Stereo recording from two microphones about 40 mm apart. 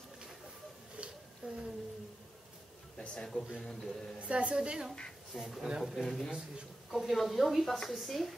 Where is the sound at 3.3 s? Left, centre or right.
Centre.